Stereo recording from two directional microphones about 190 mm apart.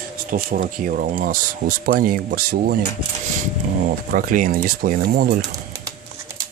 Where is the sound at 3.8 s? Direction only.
45° right (ahead or behind).